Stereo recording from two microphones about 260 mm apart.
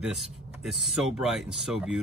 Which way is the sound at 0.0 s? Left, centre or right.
Centre.